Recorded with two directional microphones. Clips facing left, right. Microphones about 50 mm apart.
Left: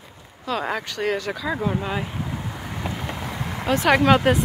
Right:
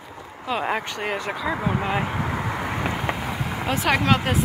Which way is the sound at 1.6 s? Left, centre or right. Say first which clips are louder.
Even; right.